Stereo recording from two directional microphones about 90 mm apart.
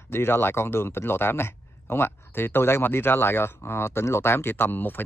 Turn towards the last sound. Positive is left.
turn(degrees=20)  # may be behind; listen again after turning